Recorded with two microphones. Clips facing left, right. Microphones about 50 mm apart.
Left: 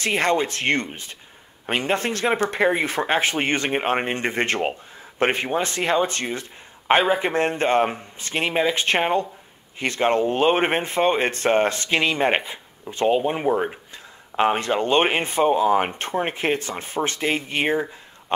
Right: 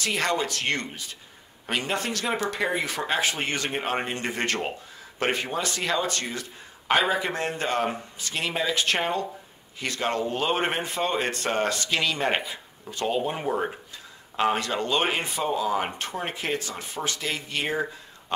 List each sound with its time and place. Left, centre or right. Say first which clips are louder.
0.0 s speech: left 5 dB; left